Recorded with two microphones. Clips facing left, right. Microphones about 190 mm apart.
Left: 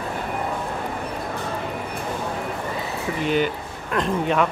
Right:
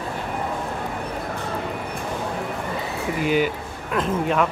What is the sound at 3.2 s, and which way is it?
A man's voice, 5° right (ahead or behind).